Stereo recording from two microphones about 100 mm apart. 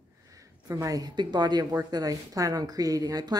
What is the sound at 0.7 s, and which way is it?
A woman's voice, 35° right (ahead or behind).